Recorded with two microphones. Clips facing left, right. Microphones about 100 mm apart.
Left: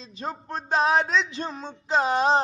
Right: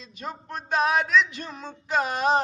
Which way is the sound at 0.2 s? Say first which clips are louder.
Left 3 dB; 30° left (ahead or behind).